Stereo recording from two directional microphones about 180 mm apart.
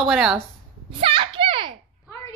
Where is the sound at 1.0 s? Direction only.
30° right (ahead or behind).